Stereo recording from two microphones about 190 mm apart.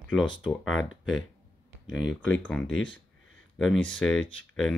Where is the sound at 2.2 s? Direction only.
5° left (ahead or behind).